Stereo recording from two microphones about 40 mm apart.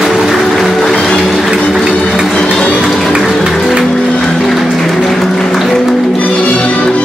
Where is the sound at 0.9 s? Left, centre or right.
Centre.